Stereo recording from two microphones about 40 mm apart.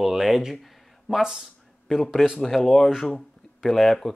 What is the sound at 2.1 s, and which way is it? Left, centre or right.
Speech, centre.